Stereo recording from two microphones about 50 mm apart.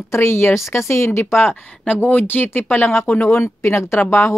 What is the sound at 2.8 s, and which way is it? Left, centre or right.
Speech, left.